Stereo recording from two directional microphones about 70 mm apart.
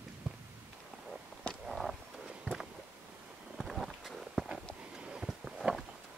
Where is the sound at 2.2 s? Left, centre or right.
Centre.